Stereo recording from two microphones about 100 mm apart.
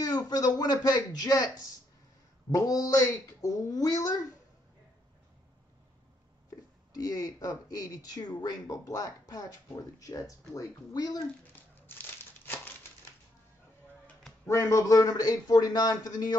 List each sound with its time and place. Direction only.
0.0 s speech: 40° left (ahead or behind)
6.9 s speech: 40° left (ahead or behind)
11.5 s crumpling: 20° left (ahead or behind)
14.4 s speech: 30° left (ahead or behind)